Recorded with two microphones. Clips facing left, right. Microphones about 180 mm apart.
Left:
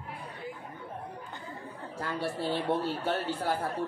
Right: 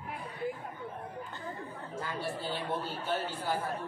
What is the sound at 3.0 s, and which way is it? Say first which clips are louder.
Speech: left 3 dB; 65° left (ahead or behind).